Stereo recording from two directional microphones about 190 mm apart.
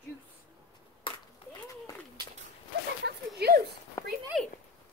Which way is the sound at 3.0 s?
55° right (ahead or behind).